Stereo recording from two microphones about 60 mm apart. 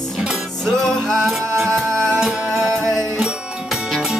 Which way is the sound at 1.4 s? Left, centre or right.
Right.